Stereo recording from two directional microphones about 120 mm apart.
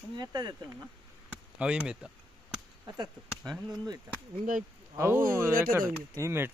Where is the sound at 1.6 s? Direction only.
10° right (ahead or behind).